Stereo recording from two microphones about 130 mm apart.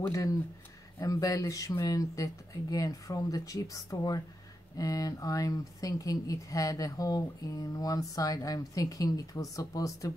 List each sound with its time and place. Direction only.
0.9 s speech: 25° left (ahead or behind)